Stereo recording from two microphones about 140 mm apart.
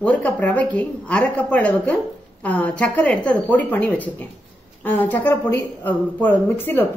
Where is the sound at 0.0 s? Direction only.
10° left (ahead or behind).